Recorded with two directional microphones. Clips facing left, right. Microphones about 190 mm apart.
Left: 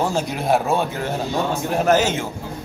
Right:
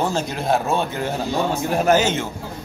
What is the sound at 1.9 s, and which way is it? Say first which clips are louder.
Speech: even; 5° left (ahead or behind).